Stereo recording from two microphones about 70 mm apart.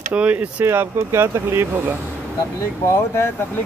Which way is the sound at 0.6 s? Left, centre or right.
Right.